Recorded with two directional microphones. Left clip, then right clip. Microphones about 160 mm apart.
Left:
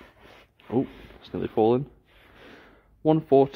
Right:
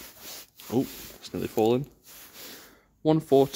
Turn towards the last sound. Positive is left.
turn(degrees=-20)  # may be behind; listen again after turning